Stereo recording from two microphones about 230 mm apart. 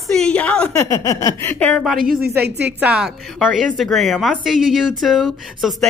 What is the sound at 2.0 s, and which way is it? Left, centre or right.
Speech, right.